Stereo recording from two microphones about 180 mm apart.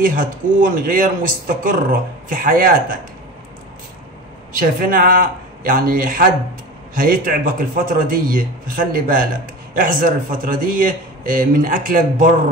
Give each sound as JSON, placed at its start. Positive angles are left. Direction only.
{"t": 0.0, "sound": "a man's voice", "side_deg": -50}
{"t": 4.5, "sound": "a man's voice", "side_deg": -50}